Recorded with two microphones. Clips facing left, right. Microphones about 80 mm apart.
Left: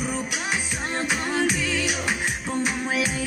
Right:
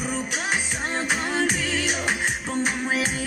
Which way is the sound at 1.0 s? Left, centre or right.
Right.